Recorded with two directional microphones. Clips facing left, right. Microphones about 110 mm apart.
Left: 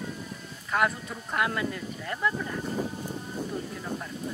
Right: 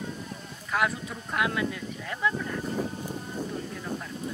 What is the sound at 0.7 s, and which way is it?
Speech, centre (ahead or behind).